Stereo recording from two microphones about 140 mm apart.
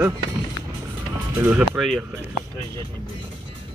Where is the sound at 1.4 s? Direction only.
10° right (ahead or behind).